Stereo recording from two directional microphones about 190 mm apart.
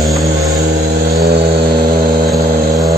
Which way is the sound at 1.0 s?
55° right (ahead or behind).